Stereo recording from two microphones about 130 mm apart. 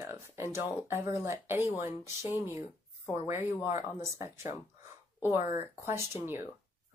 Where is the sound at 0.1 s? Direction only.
20° right (ahead or behind).